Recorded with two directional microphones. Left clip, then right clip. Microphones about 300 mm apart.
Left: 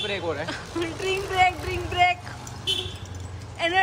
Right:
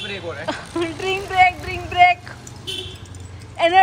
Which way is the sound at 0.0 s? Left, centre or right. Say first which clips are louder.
Left 1 dB; left.